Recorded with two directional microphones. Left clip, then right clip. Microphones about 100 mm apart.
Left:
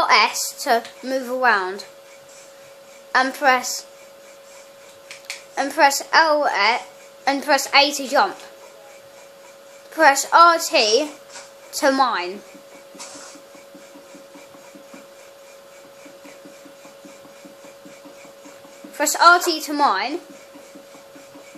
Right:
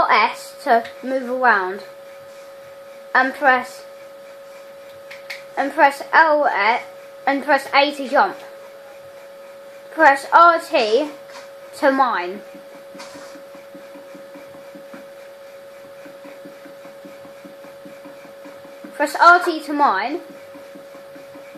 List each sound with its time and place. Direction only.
0.0 s a sound: 15° left (ahead or behind)
0.7 s a woman's voice: 15° left (ahead or behind)
3.1 s a woman's voice: 20° left (ahead or behind)
5.5 s a woman's voice: 25° left (ahead or behind)
9.9 s a woman's voice: 20° left (ahead or behind)
19.1 s a woman's voice: 20° left (ahead or behind)